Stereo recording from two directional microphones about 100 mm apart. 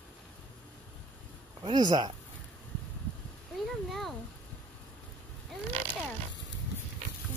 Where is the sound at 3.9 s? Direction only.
Centre (ahead or behind).